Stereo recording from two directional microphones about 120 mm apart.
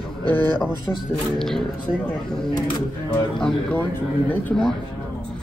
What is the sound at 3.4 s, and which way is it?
Speech, 10° left (ahead or behind).